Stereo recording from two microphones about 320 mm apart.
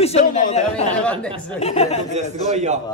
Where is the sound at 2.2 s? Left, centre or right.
Right.